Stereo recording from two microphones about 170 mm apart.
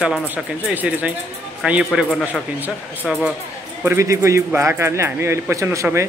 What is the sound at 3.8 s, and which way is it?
Speech, 15° right (ahead or behind).